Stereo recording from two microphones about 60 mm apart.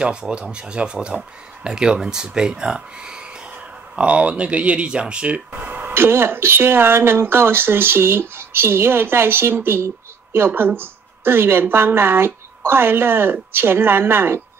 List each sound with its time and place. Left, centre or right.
0.0 s speech: centre; by 14.4 s right